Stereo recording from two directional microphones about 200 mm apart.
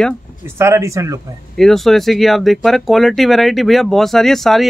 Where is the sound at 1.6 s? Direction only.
Centre (ahead or behind).